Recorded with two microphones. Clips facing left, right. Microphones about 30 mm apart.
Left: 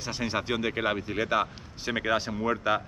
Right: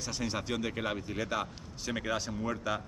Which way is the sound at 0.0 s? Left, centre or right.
Left.